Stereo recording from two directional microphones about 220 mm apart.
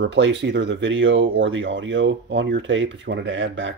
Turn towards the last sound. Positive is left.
turn(degrees=-55)  # may be behind; listen again after turning